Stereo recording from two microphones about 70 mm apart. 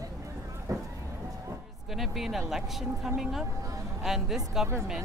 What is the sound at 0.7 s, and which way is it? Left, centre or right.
Vehicle, right.